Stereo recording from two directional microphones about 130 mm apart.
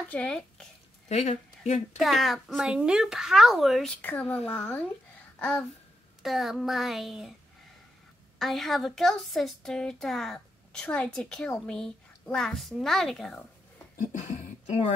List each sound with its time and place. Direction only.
0.1 s speech: 10° left (ahead or behind)
1.0 s speech: 60° left (ahead or behind)
2.0 s a woman's voice: centre (ahead or behind)
6.2 s a woman's voice: centre (ahead or behind)
8.4 s a woman's voice: centre (ahead or behind)
14.1 s speech: 65° left (ahead or behind)